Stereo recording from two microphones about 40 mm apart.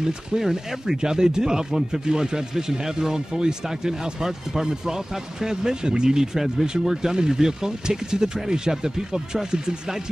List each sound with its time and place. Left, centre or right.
0.0 s speech: centre